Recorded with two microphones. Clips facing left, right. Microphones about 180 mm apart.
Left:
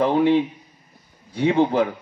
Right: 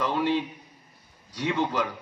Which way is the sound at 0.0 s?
60° left (ahead or behind).